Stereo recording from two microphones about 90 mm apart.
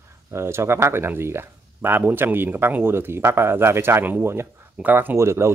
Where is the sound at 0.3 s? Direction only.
30° right (ahead or behind).